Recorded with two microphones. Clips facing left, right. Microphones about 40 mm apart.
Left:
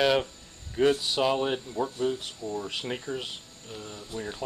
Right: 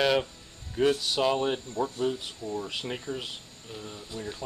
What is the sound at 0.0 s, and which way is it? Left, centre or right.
Speech, centre.